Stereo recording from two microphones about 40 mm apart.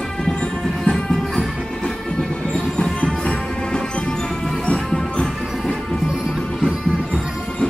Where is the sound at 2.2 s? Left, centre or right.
Left.